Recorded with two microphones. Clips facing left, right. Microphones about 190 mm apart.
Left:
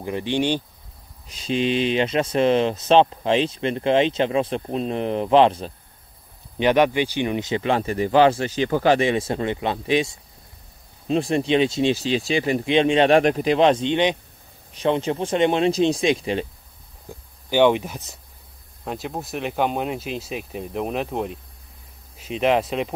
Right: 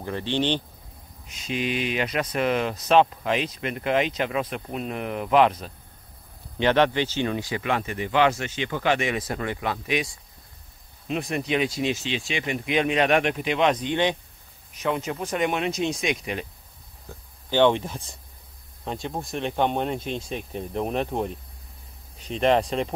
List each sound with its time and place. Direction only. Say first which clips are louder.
0.0 s speech: left 3 dB; 15° left (ahead or behind)
1.2 s speech: left 6 dB; 30° left (ahead or behind)
6.6 s speech: left 3 dB; 15° left (ahead or behind); by 16.4 s 30° left (ahead or behind)
17.1 s speech: left 3 dB; 10° left (ahead or behind)